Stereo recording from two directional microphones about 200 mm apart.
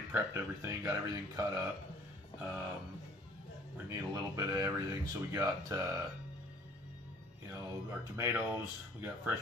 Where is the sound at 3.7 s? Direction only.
20° right (ahead or behind).